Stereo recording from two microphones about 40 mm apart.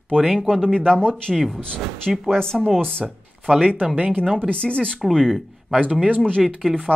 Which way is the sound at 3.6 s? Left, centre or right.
Right.